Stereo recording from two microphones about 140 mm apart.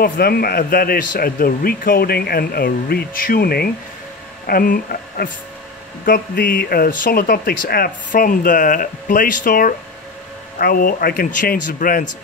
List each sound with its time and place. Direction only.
0.0 s speech: 90° left